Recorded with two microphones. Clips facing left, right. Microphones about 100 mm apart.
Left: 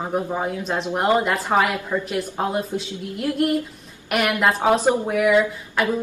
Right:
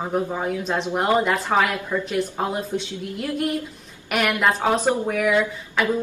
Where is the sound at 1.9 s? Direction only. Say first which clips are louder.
Left 1 dB; 15° left (ahead or behind).